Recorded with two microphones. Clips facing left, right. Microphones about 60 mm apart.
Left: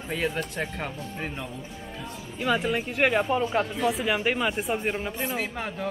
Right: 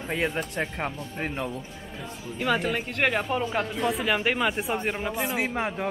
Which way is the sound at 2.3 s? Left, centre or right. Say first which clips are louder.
Even; centre.